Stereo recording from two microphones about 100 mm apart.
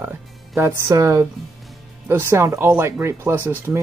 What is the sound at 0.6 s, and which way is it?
Speech, 30° right (ahead or behind).